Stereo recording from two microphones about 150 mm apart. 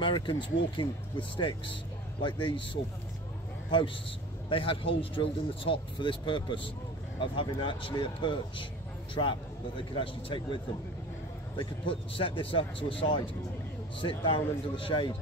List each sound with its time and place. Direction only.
0.0 s speech: 30° left (ahead or behind)
4.5 s speech: 35° left (ahead or behind)